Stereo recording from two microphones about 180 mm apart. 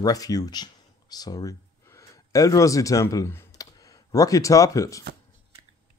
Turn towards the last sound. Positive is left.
turn(degrees=20)  # may be behind; listen again after turning